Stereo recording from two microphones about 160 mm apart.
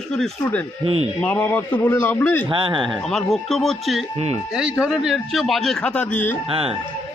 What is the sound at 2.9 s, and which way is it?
A man's voice, centre (ahead or behind).